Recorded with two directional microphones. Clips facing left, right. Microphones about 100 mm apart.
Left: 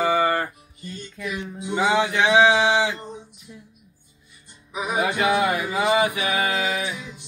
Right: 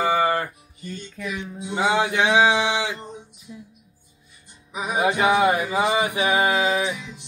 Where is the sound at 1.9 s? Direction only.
15° right (ahead or behind).